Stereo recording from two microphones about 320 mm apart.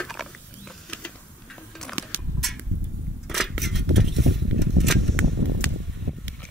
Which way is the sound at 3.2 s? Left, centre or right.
Centre.